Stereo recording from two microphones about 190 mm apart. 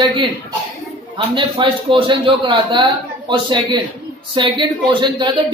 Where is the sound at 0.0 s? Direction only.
25° right (ahead or behind).